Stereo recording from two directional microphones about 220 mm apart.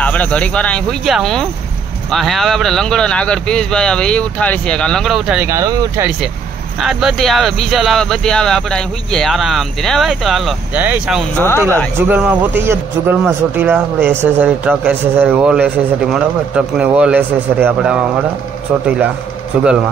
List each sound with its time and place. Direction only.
0.0 s speech: 5° left (ahead or behind)
11.3 s speech: 10° left (ahead or behind)
12.1 s speech: 5° right (ahead or behind)